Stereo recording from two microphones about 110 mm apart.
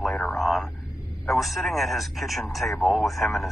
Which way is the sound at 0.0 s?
5° left (ahead or behind).